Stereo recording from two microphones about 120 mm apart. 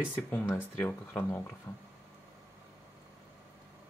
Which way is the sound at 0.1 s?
15° left (ahead or behind).